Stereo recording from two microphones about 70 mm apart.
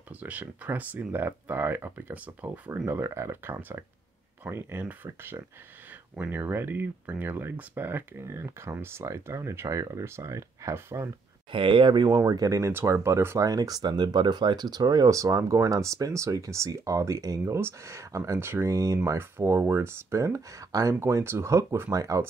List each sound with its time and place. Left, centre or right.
0.1 s speech: right
2.9 s speech: right
11.9 s speech: right
12.2 s speech: right
13.4 s speech: right
17.6 s speech: right
21.9 s speech: right